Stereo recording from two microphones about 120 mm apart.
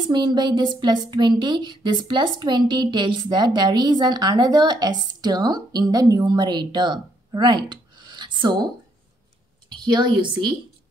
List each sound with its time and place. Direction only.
0.0 s a woman's voice: 40° right (ahead or behind)
9.7 s a woman's voice: 35° right (ahead or behind)